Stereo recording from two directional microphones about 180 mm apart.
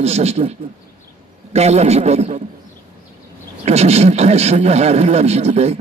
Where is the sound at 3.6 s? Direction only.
35° right (ahead or behind).